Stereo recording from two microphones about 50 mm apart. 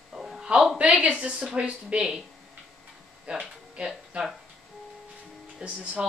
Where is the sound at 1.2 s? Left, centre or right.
Right.